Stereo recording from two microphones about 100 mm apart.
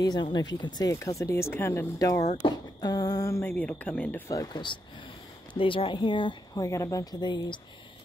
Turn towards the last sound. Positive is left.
turn(degrees=50)  # may be behind; listen again after turning